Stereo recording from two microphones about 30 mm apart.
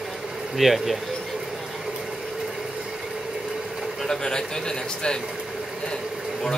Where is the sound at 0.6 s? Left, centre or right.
Centre.